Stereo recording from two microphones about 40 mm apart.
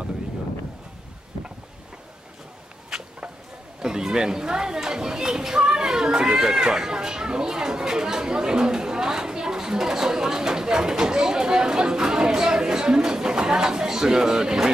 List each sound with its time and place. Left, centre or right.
2.9 s insect: centre
3.8 s speech: centre